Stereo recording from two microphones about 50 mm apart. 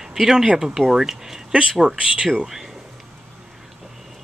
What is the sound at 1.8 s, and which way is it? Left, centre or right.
Speech, centre.